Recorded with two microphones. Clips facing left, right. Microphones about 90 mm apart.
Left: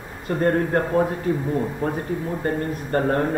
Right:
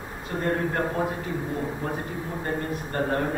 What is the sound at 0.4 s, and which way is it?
Speech, 45° left (ahead or behind).